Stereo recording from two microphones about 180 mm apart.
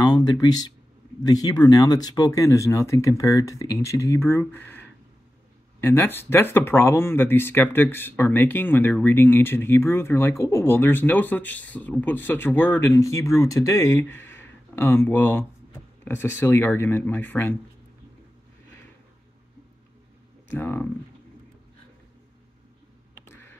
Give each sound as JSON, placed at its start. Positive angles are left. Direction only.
{"t": 0.0, "sound": "speech", "side_deg": 20}
{"t": 20.4, "sound": "speech", "side_deg": 10}